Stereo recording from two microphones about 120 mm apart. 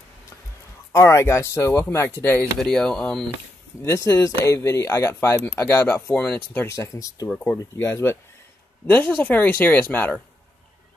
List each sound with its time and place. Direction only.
0.9 s speech: 25° left (ahead or behind)
2.6 s speech: 5° left (ahead or behind)
3.8 s speech: 25° left (ahead or behind)
6.7 s speech: 25° left (ahead or behind)
7.2 s speech: 5° left (ahead or behind)
7.5 s speech: 25° left (ahead or behind)
8.8 s speech: 10° left (ahead or behind)